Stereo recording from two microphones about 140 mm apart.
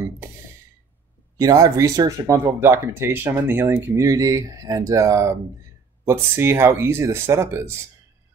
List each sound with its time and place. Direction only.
1.4 s speech: 25° right (ahead or behind)